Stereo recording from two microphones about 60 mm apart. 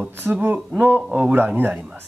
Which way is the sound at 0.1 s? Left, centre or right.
Right.